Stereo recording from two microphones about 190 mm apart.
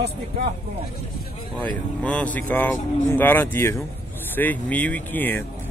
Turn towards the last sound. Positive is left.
turn(degrees=10)  # may be behind; listen again after turning